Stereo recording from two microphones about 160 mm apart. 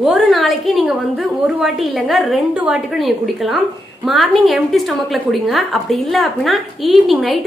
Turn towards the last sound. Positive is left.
turn(degrees=0)  # may be behind; listen again after turning